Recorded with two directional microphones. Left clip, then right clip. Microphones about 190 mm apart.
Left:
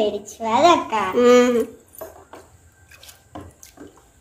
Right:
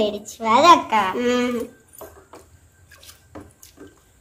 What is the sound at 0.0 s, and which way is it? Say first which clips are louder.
A child's voice: even; 45° right (ahead or behind).